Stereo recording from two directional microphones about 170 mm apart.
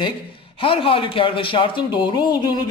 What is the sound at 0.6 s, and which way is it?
Speech, 35° left (ahead or behind).